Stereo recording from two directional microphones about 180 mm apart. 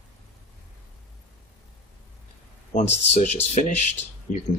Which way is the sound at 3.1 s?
40° left (ahead or behind).